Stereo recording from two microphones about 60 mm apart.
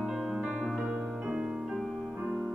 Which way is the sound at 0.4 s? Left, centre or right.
Right.